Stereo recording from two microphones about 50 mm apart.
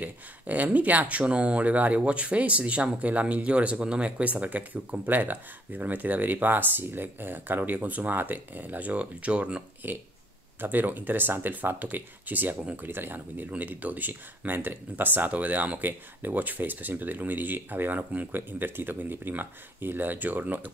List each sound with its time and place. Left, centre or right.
0.0 s speech: right
4.2 s speech: right
9.8 s speech: right